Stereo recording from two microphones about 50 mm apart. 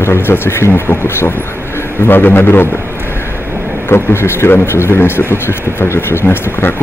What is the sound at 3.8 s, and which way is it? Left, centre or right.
A man's voice, left.